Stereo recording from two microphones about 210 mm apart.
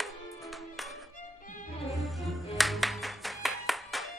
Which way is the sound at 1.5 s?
40° left (ahead or behind).